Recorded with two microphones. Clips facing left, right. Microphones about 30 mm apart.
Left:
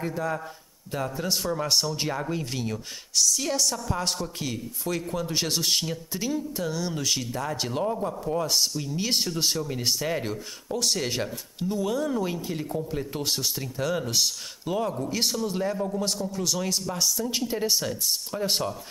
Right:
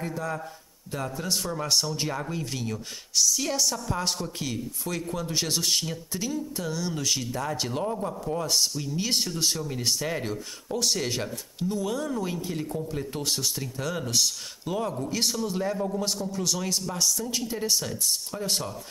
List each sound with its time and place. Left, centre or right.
0.0 s a man's voice: centre
3.2 s a man's voice: centre
17.3 s a man's voice: centre